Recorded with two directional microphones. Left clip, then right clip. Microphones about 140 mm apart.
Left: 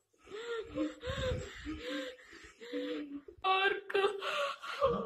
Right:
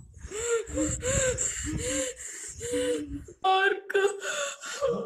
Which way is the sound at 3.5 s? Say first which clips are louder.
Right 7 dB; 15° right (ahead or behind).